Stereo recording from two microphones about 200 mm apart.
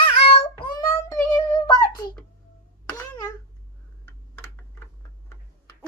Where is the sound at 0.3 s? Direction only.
25° left (ahead or behind).